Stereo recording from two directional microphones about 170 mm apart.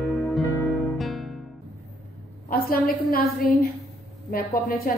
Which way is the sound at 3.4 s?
60° left (ahead or behind).